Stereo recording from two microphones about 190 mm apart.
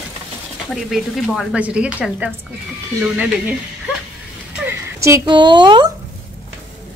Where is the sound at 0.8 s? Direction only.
Centre (ahead or behind).